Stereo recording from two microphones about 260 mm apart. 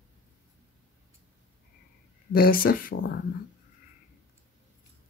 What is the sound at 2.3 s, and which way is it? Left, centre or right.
Speech, left.